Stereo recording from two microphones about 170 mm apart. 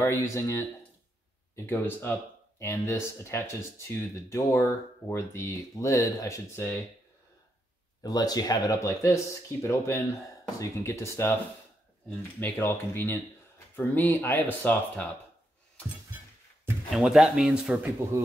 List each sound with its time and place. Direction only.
0.0 s speech: 15° left (ahead or behind)
8.0 s speech: 20° left (ahead or behind)
16.9 s speech: centre (ahead or behind)